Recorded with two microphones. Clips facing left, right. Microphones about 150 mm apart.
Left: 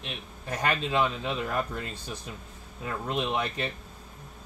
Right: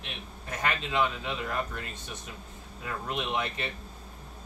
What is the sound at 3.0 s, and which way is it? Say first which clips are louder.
Speech: left 3 dB; 30° left (ahead or behind).